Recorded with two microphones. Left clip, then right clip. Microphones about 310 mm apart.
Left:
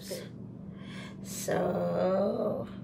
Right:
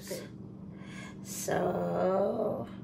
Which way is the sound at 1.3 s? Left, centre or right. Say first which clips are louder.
Left 1 dB; centre.